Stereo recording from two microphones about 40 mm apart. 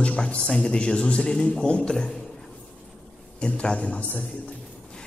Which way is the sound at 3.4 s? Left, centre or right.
Left.